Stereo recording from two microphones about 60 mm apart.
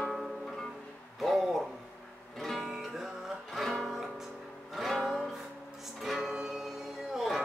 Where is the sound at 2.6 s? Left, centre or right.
Centre.